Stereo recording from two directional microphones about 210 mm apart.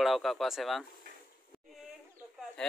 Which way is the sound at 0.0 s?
Centre (ahead or behind).